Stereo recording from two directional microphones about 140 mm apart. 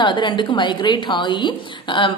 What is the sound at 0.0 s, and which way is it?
A woman's voice, 35° left (ahead or behind).